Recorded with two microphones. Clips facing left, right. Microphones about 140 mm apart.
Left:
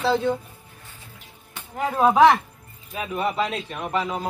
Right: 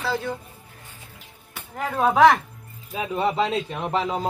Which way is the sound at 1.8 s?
5° left (ahead or behind).